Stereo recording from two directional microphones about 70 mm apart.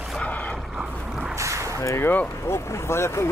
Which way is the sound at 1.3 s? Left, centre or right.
Right.